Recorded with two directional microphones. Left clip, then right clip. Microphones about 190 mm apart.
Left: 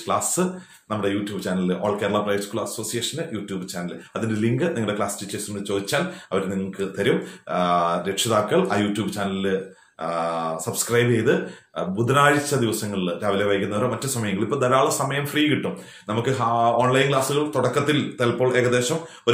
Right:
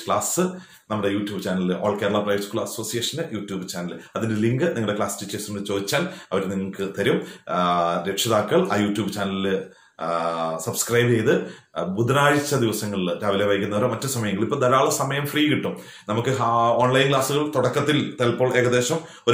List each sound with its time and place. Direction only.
0.1 s speech: 5° left (ahead or behind)